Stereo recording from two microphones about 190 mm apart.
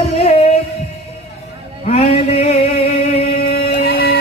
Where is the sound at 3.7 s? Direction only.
50° left (ahead or behind).